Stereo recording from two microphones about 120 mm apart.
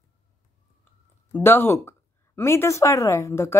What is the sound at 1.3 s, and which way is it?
Speech, 20° left (ahead or behind).